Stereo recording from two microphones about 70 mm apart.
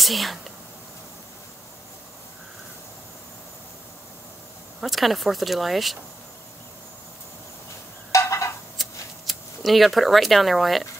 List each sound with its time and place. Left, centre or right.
0.0 s speech: centre
4.7 s speech: centre
8.1 s a sound: left
8.8 s shuffling cards: centre
9.2 s speech: centre